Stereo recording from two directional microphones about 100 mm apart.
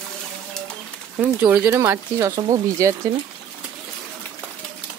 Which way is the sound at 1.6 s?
25° right (ahead or behind).